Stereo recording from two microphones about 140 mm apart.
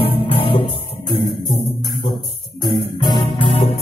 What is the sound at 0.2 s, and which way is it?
Music, 40° left (ahead or behind).